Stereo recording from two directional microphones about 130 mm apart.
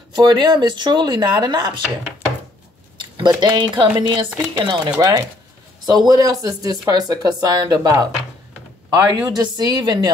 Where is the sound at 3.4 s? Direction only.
35° right (ahead or behind).